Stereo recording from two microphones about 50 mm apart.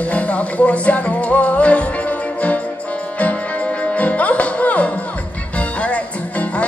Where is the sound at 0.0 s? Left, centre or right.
Left.